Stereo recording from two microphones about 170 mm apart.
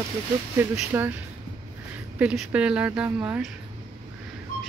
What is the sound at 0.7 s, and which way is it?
Speech, 10° right (ahead or behind).